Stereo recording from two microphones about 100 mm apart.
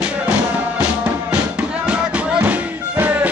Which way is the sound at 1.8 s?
10° right (ahead or behind).